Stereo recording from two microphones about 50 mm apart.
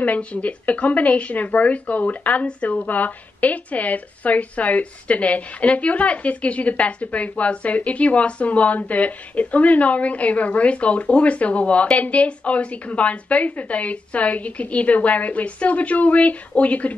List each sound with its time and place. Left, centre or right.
0.0 s speech: left